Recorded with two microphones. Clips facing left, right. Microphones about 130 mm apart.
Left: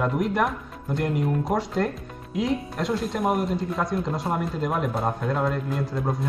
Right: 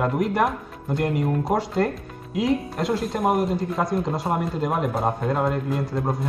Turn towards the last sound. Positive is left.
turn(degrees=0)  # may be behind; listen again after turning